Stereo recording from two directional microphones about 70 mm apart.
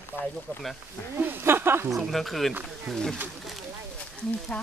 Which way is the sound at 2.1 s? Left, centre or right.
Centre.